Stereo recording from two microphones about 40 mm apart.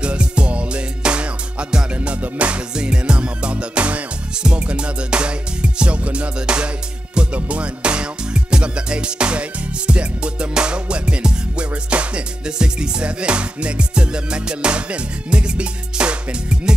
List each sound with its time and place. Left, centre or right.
0.0 s music: right
2.7 s music: right